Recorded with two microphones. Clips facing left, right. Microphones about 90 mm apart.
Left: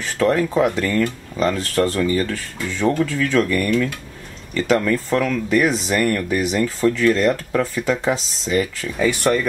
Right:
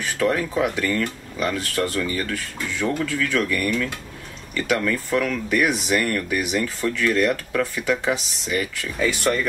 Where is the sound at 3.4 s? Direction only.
Centre (ahead or behind).